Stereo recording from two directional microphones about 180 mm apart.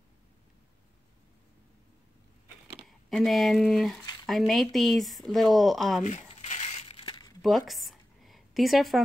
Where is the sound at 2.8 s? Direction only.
Centre (ahead or behind).